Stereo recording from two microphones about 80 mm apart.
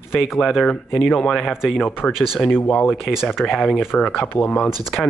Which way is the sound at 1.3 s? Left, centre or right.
Centre.